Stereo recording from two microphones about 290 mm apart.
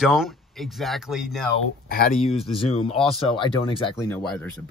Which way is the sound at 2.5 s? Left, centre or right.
Centre.